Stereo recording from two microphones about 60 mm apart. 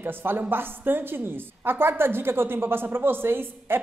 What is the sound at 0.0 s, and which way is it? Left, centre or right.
A woman's voice, right.